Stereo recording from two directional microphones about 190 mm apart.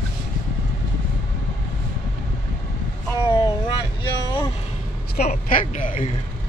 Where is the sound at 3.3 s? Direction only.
20° left (ahead or behind).